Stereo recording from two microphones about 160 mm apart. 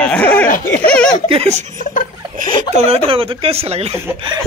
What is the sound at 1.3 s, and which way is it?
Speech, 40° right (ahead or behind).